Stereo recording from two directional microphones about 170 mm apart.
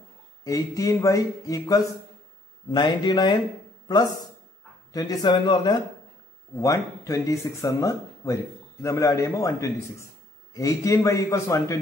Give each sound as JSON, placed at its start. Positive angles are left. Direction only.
{"t": 0.4, "sound": "a man's voice", "side_deg": 20}